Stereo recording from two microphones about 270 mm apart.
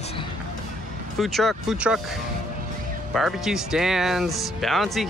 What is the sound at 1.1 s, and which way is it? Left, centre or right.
Speech, centre.